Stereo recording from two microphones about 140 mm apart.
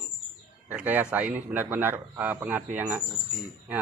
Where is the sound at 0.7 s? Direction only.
10° right (ahead or behind).